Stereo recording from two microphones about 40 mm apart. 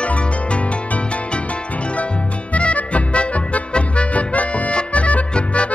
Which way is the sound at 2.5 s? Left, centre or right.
Left.